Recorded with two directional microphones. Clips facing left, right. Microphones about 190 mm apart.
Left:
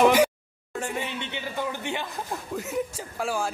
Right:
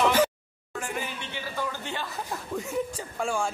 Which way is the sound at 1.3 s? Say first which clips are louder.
Left 1 dB; 20° left (ahead or behind).